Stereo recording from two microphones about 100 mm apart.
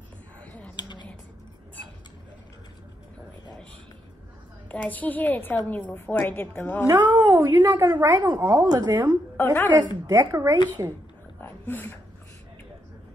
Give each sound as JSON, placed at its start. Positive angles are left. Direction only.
{"t": 0.4, "sound": "a sound", "side_deg": 15}
{"t": 0.7, "sound": "computer keyboard", "side_deg": 45}
{"t": 4.6, "sound": "a woman's voice", "side_deg": 15}
{"t": 7.1, "sound": "a woman's voice", "side_deg": -45}
{"t": 7.3, "sound": "a woman's voice", "side_deg": -25}
{"t": 7.8, "sound": "a woman's voice", "side_deg": -45}
{"t": 9.4, "sound": "a woman's voice", "side_deg": 20}
{"t": 10.0, "sound": "a woman's voice", "side_deg": -35}
{"t": 11.4, "sound": "speech", "side_deg": 20}